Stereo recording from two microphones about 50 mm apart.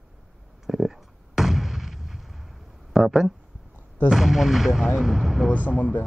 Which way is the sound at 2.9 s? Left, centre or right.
Centre.